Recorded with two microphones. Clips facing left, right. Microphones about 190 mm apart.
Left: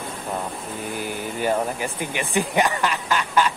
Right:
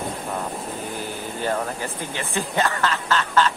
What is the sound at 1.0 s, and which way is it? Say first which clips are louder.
Speech: left 2 dB; 15° left (ahead or behind).